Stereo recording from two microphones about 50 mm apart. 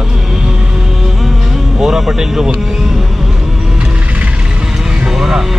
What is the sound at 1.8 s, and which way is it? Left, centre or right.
Speech, centre.